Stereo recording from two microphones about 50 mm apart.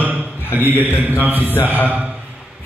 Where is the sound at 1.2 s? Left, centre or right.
Right.